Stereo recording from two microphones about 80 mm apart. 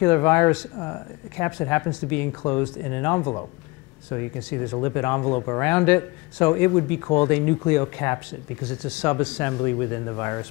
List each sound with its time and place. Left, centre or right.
0.0 s a man's voice: left
3.2 s a man's voice: left
5.7 s a man's voice: centre